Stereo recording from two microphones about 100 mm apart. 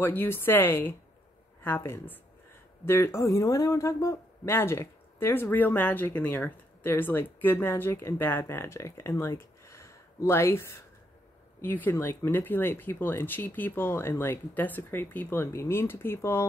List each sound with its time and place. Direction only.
0.0 s speech: 20° left (ahead or behind)